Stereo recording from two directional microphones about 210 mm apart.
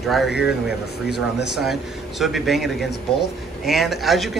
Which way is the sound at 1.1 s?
55° left (ahead or behind).